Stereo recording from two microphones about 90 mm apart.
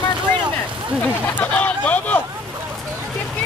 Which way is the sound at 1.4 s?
15° left (ahead or behind).